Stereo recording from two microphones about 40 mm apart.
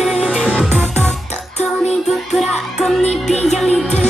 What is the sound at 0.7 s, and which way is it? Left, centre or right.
Music, centre.